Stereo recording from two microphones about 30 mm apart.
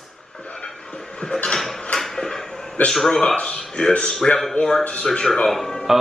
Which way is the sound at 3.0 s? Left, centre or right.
Left.